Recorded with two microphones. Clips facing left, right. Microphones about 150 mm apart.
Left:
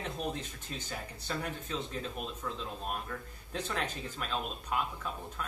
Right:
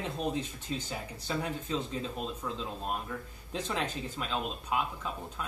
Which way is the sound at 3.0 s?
5° right (ahead or behind).